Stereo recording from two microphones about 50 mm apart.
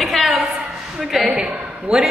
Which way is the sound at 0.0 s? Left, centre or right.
Centre.